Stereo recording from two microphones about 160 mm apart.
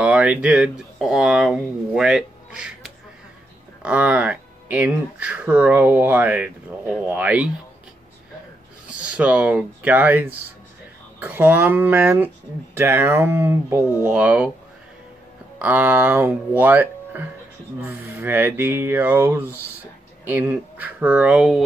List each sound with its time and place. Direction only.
0.0 s speech: 5° right (ahead or behind)
9.1 s speech: 10° right (ahead or behind)
15.6 s speech: 10° right (ahead or behind)